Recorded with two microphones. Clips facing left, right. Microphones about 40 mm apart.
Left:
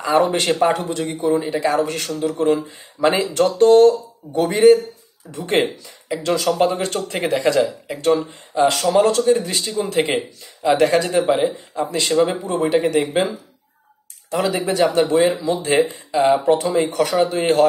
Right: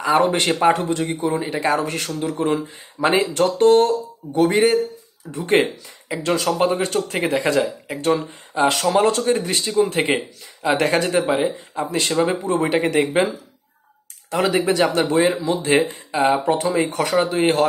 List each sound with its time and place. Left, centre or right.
0.0 s speech: right
14.3 s speech: right